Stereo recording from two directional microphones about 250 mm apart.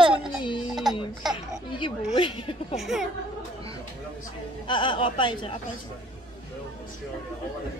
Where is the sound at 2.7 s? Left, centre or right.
Centre.